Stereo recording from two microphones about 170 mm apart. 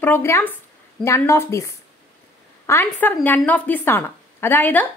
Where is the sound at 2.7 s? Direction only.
15° left (ahead or behind).